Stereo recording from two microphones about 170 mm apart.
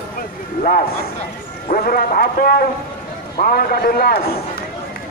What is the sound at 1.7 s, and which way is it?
Speech, 55° left (ahead or behind).